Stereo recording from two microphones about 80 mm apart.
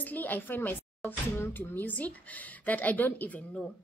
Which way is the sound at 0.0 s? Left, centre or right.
Left.